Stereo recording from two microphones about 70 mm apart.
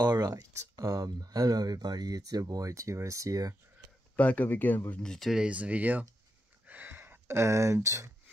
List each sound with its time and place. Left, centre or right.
0.0 s speech: right
0.3 s speech: right
4.2 s speech: left
5.0 s speech: centre
5.3 s speech: centre
6.6 s a sound: right